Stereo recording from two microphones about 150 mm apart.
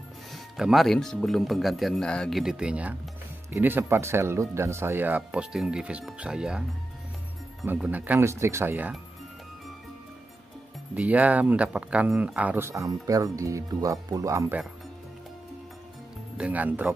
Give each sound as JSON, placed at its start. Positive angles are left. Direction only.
{"t": 0.3, "sound": "speech", "side_deg": 0}
{"t": 7.6, "sound": "speech", "side_deg": -10}
{"t": 11.0, "sound": "speech", "side_deg": -10}
{"t": 16.3, "sound": "speech", "side_deg": -10}